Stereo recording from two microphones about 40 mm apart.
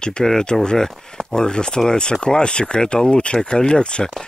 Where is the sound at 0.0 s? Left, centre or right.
Centre.